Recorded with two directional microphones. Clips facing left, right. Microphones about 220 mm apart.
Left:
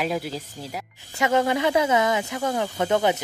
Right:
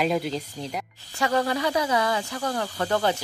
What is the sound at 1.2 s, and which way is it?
Speech, 20° left (ahead or behind).